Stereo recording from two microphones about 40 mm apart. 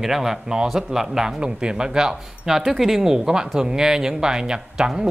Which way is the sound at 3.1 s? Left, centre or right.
Centre.